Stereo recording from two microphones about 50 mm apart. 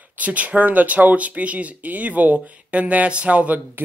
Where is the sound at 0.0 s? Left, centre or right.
Right.